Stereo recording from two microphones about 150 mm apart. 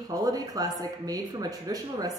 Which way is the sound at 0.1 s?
25° right (ahead or behind).